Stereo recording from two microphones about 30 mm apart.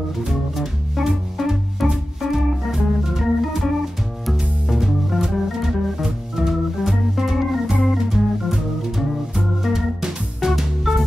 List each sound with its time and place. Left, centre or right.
0.3 s music: centre
6.3 s organ: centre
7.8 s music: centre
9.6 s organ: centre